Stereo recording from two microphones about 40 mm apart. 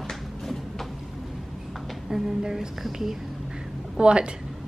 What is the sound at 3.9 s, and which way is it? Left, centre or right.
Speech, right.